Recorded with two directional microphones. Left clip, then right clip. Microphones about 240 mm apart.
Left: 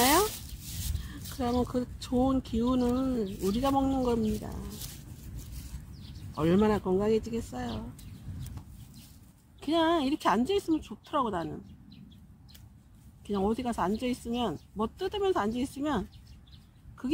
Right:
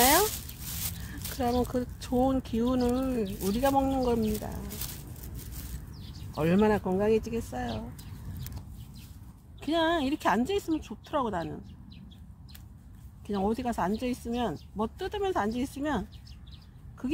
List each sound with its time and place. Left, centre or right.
0.0 s a sound: right
1.4 s speech: right
6.3 s speech: centre
9.6 s speech: centre
13.3 s a woman's voice: centre